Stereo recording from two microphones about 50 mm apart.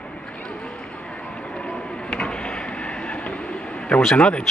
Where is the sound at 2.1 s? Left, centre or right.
Centre.